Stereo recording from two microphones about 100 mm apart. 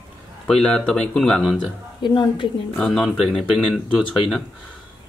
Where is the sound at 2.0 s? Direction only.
50° left (ahead or behind).